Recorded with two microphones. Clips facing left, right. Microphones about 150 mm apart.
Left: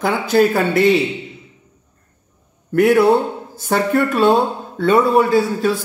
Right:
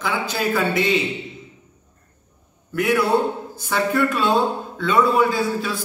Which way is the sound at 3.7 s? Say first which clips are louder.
Left 4 dB; 50° left (ahead or behind).